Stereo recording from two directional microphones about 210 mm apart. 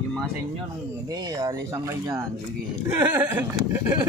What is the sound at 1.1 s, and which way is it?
Speech, 15° right (ahead or behind).